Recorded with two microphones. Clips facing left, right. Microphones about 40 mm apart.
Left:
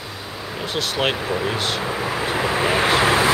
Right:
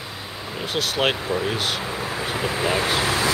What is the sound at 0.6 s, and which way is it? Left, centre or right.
Speech, centre.